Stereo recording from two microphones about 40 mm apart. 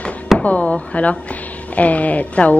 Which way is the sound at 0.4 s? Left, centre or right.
Left.